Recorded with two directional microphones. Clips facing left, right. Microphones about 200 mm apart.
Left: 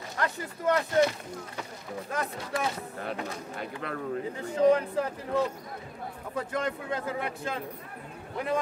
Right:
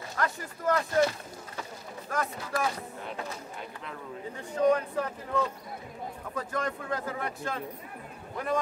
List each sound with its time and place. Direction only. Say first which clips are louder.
0.2 s speech: left 1 dB; 25° left (ahead or behind)
3.8 s speech: left 8 dB; 60° left (ahead or behind)
4.6 s speech: left 2 dB; 25° left (ahead or behind)